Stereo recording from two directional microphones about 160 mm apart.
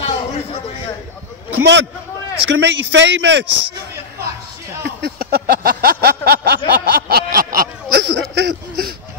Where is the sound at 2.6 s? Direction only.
90° right.